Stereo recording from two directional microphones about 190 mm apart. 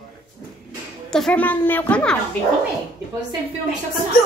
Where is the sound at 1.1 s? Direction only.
5° left (ahead or behind).